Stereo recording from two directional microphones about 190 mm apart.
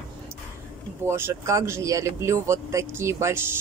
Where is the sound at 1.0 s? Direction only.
15° right (ahead or behind).